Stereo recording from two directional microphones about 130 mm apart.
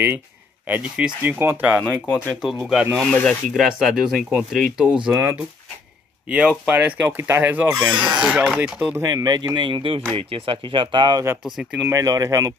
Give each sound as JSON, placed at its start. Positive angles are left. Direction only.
{"t": 0.7, "sound": "speech", "side_deg": -10}
{"t": 3.6, "sound": "speech", "side_deg": -5}
{"t": 5.1, "sound": "speech", "side_deg": -20}
{"t": 9.0, "sound": "speech", "side_deg": -30}
{"t": 11.4, "sound": "speech", "side_deg": -5}
{"t": 11.9, "sound": "speech", "side_deg": -25}